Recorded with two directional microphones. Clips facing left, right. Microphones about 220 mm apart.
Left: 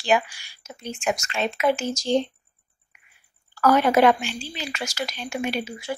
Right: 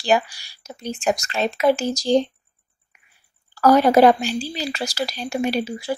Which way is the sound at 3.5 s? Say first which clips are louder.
Right 4 dB; 35° right (ahead or behind).